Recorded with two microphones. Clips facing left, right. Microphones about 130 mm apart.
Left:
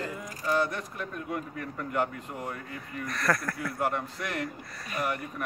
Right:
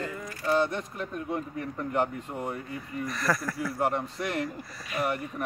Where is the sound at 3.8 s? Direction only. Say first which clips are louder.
Right 2 dB; 25° right (ahead or behind).